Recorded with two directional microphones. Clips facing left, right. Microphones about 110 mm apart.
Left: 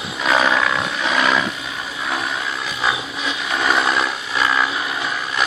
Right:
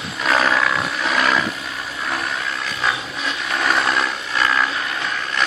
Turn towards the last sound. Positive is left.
turn(degrees=10)  # may be behind; listen again after turning